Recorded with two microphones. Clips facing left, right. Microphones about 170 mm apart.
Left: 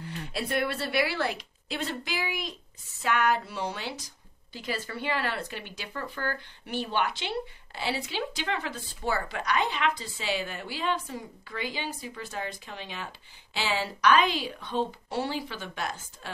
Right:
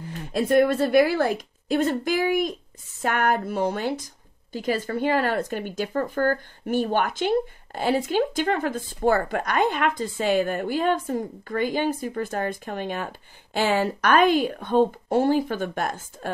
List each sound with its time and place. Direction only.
0.3 s a woman's voice: 45° right (ahead or behind)